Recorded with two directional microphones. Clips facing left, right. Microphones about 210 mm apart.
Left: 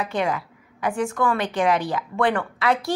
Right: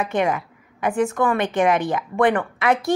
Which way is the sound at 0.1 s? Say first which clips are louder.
Right 3 dB; 20° right (ahead or behind).